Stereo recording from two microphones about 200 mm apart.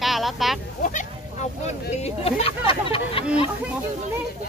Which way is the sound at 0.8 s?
40° left (ahead or behind).